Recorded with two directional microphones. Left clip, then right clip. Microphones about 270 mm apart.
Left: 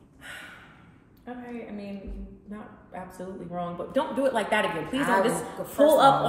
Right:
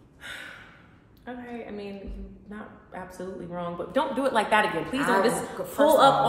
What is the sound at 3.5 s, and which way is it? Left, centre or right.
A woman's voice, centre.